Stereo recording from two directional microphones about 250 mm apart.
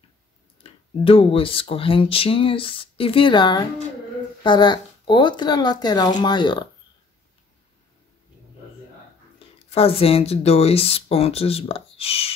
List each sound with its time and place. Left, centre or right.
0.7 s speech: left
9.7 s speech: left